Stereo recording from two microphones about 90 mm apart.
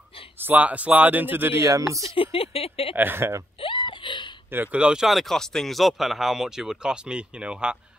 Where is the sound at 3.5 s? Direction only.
65° left (ahead or behind).